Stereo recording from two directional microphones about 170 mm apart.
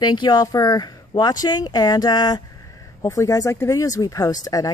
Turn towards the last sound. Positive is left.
turn(degrees=20)  # may be behind; listen again after turning